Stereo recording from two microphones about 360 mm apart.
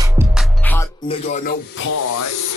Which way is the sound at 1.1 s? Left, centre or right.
Centre.